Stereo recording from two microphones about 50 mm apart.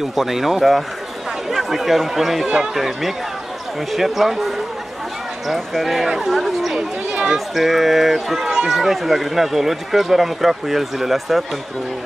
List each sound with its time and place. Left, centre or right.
0.1 s speech: centre
2.4 s a man's voice: centre
2.7 s speech: centre